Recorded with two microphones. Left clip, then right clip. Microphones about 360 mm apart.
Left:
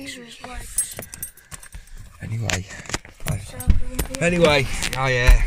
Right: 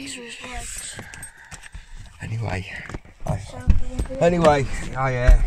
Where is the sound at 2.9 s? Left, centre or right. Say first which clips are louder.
Left 10 dB; left.